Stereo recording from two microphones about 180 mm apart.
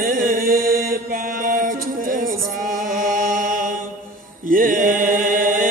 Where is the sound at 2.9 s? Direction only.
50° right (ahead or behind).